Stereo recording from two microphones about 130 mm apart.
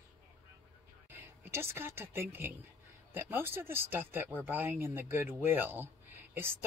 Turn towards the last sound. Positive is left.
turn(degrees=-15)  # may be behind; listen again after turning